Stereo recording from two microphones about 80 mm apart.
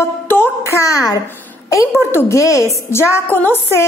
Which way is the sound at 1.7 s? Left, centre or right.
Left.